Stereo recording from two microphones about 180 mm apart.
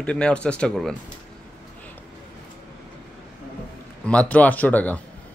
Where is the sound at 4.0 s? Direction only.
5° left (ahead or behind).